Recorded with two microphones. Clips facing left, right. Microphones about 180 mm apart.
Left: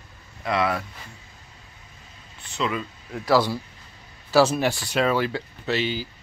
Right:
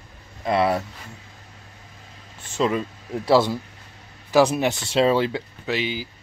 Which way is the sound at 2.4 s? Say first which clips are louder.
Right 5 dB; 45° right (ahead or behind).